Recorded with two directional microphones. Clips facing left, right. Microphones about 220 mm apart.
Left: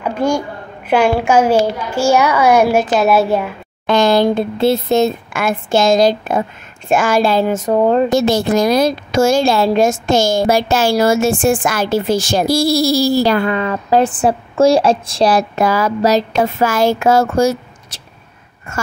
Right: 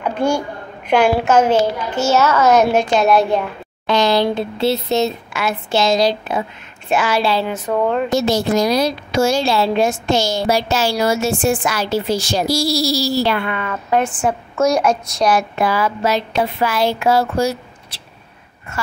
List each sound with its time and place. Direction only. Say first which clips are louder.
1.2 s speech: left 2 dB; 10° left (ahead or behind)
3.8 s a woman's voice: left 3 dB; 50° left (ahead or behind)
8.1 s a woman's voice: left 3 dB; 55° left (ahead or behind)